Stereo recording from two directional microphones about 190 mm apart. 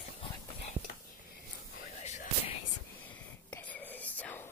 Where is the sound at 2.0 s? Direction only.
35° left (ahead or behind).